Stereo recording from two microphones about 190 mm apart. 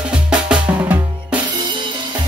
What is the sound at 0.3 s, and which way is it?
Drum, 5° right (ahead or behind).